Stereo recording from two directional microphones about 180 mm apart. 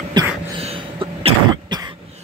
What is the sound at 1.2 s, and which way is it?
Cough, 25° right (ahead or behind).